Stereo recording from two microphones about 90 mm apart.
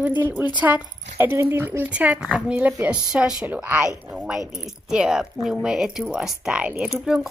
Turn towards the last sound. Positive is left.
turn(degrees=-5)  # may be behind; listen again after turning